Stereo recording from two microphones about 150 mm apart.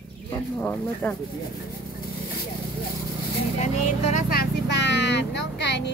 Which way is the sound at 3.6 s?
50° left (ahead or behind).